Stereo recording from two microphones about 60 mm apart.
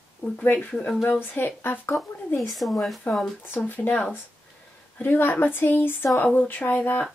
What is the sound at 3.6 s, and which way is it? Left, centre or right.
A woman's voice, left.